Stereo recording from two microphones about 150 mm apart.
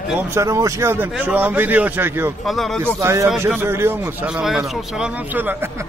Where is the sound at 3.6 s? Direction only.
15° right (ahead or behind).